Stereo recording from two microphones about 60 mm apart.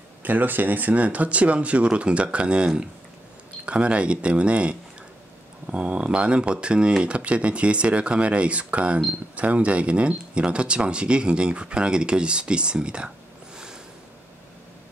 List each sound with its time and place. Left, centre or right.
0.2 s speech: right